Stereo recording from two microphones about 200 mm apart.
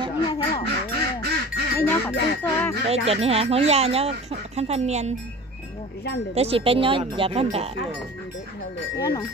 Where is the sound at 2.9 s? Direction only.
30° right (ahead or behind).